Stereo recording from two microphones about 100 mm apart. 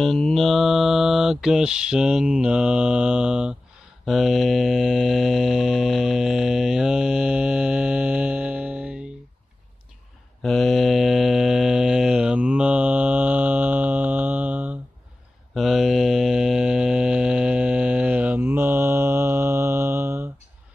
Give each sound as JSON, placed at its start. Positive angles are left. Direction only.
{"t": 0.0, "sound": "mantra", "side_deg": 5}
{"t": 10.4, "sound": "mantra", "side_deg": 5}
{"t": 15.5, "sound": "mantra", "side_deg": 0}